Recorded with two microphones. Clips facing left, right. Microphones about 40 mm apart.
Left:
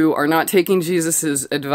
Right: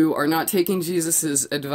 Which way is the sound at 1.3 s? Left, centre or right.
Left.